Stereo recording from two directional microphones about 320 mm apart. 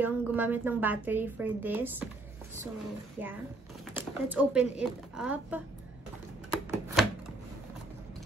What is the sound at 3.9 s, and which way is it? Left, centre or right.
A woman's voice, centre.